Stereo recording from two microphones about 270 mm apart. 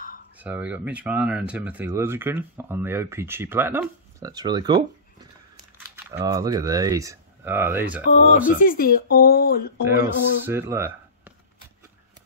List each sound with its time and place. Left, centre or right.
0.4 s speech: centre
6.0 s speech: centre
8.0 s speech: left
10.0 s speech: centre